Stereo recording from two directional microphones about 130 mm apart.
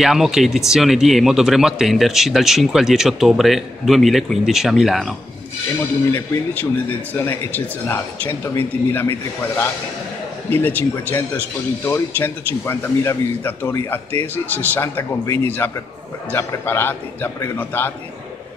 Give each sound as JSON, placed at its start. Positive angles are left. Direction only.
{"t": 0.0, "sound": "speech", "side_deg": 0}
{"t": 5.8, "sound": "speech", "side_deg": 15}
{"t": 10.5, "sound": "speech", "side_deg": 15}